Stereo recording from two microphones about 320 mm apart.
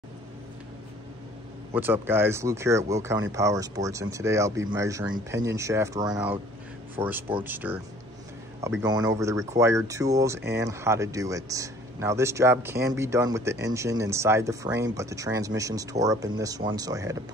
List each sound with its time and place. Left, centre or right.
1.7 s speech: centre
8.8 s speech: centre